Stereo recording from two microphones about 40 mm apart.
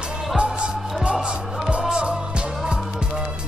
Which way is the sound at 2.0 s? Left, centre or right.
Right.